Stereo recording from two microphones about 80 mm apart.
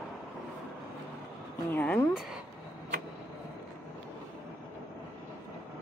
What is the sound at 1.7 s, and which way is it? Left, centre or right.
Speech, left.